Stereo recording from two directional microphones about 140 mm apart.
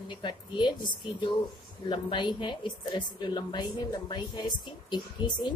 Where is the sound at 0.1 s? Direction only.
35° left (ahead or behind).